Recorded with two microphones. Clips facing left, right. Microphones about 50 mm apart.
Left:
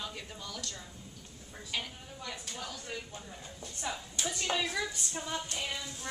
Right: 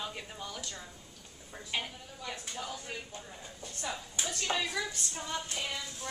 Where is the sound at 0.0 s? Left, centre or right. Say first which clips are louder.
Right 2 dB; centre.